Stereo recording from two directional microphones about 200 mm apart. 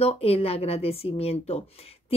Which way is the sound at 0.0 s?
30° left (ahead or behind).